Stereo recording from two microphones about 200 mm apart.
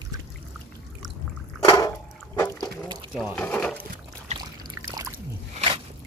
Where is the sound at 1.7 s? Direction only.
20° left (ahead or behind).